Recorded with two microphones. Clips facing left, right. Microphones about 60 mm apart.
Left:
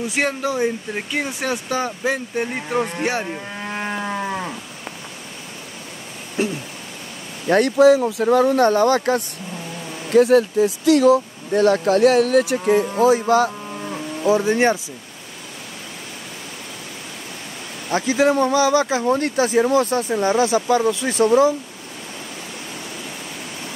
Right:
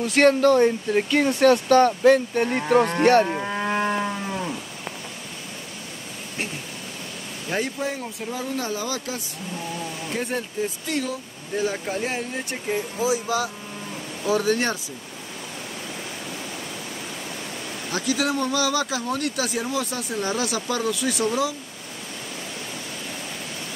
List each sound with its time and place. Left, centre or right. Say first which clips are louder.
0.0 s speech: right 5 dB; centre
3.3 s livestock: right 4 dB; centre
7.4 s speech: left 14 dB; left
10.1 s speech: left 15 dB; left
13.0 s speech: left 8 dB; left
14.2 s speech: left 5 dB; left
17.8 s speech: left 7 dB; left